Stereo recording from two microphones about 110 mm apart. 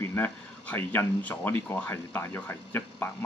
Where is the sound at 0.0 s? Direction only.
20° left (ahead or behind).